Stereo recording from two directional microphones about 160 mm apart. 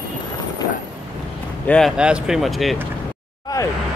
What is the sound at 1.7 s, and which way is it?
Speech, centre (ahead or behind).